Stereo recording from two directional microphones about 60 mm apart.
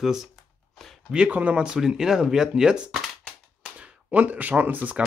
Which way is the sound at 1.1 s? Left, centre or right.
Centre.